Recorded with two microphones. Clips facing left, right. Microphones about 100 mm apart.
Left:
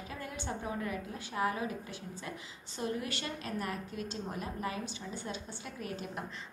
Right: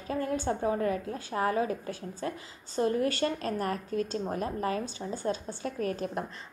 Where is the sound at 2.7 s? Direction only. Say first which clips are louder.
Right 9 dB; 40° right (ahead or behind).